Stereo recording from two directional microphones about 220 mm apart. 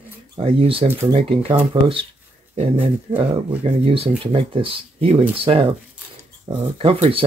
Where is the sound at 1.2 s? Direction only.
25° right (ahead or behind).